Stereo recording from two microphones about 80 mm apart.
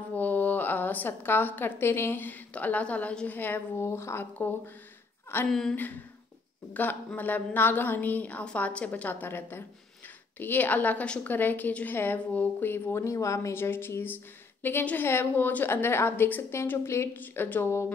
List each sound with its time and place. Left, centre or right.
0.1 s a woman's voice: left
5.5 s speech: centre
6.7 s a woman's voice: left
13.0 s a woman's voice: left